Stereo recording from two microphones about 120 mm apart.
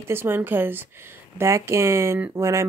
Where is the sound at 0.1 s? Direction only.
20° right (ahead or behind).